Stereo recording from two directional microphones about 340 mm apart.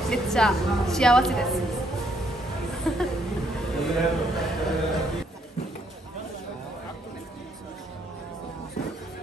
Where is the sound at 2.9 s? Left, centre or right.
Centre.